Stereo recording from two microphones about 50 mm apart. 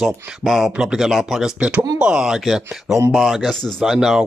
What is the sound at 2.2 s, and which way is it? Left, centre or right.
Speech, centre.